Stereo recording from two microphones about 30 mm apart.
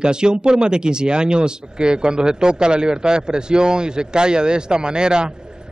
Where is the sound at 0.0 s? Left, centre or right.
Right.